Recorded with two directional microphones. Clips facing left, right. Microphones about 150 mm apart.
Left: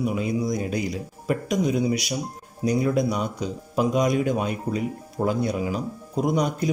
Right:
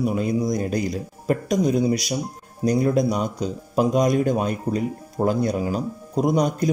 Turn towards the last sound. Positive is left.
turn(degrees=-40)  # may be behind; listen again after turning